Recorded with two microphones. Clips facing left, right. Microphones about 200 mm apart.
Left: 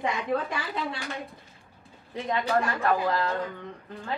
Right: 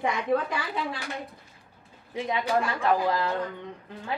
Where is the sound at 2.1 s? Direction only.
10° right (ahead or behind).